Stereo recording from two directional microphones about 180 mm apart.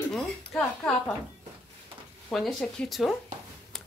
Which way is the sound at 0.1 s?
5° left (ahead or behind).